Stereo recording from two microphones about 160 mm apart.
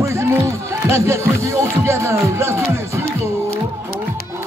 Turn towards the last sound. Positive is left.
turn(degrees=-15)  # may be behind; listen again after turning